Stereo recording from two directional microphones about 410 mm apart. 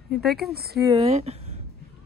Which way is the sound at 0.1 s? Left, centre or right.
Centre.